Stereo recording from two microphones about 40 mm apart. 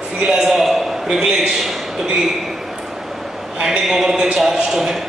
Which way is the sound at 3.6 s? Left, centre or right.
Centre.